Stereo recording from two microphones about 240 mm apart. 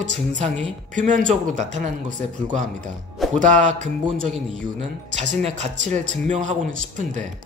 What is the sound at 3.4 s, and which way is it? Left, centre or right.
Speech, right.